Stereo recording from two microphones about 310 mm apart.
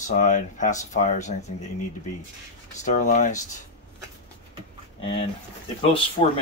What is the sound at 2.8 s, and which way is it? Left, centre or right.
Speech, left.